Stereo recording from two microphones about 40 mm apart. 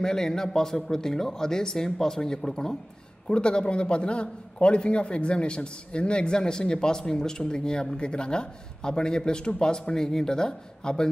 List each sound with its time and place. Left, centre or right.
0.0 s a man's voice: centre